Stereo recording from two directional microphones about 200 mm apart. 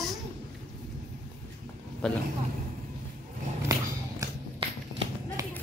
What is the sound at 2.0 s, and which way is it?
Speech, 5° left (ahead or behind).